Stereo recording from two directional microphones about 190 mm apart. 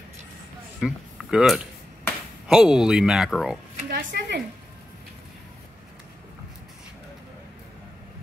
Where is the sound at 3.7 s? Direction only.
55° right (ahead or behind).